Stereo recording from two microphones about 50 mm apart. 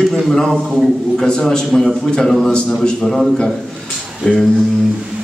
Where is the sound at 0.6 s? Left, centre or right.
Centre.